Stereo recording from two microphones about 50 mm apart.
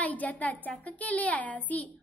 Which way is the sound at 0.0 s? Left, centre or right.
Left.